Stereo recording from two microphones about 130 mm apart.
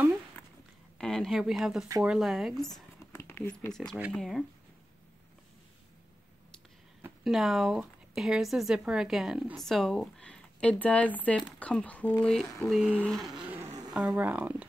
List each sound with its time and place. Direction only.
0.9 s speech: 5° left (ahead or behind)
3.1 s a sound: 20° left (ahead or behind)
3.7 s speech: 5° left (ahead or behind)
7.2 s speech: centre (ahead or behind)